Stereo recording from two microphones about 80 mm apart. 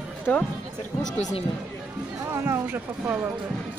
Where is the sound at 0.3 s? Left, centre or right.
Centre.